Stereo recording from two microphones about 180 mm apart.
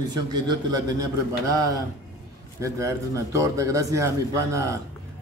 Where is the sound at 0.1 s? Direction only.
20° right (ahead or behind).